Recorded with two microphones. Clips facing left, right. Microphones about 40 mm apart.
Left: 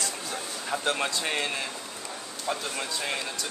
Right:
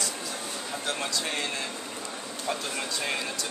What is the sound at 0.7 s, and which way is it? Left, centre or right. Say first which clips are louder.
Speech: left 4 dB; left.